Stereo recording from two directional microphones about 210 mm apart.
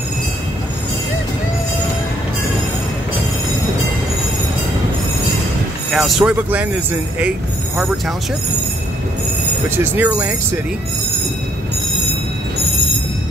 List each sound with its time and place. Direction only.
5.9 s speech: centre (ahead or behind)
9.7 s speech: 10° right (ahead or behind)